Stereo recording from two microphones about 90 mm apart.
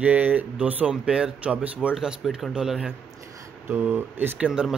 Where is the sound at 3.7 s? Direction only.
25° right (ahead or behind).